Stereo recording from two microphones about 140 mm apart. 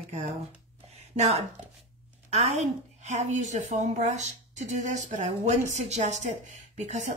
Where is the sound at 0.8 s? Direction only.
50° right (ahead or behind).